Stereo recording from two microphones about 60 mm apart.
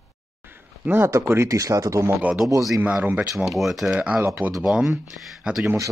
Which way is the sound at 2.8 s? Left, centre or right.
Right.